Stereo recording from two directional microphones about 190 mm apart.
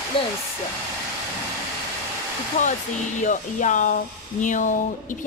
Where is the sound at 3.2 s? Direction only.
40° left (ahead or behind).